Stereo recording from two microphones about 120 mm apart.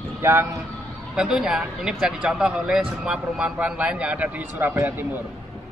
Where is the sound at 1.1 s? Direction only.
5° right (ahead or behind).